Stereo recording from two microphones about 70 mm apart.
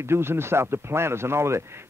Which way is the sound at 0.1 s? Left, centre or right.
Right.